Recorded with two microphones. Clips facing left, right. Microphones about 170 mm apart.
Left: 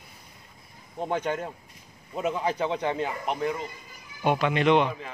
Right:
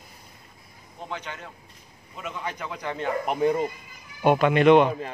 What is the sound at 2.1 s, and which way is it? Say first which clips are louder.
Speech: left 7 dB; 35° left (ahead or behind).